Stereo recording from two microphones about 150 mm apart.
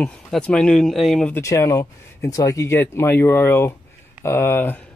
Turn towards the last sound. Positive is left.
turn(degrees=15)  # may be behind; listen again after turning